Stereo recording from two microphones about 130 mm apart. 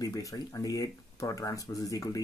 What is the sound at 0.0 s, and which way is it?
Speech, 25° left (ahead or behind).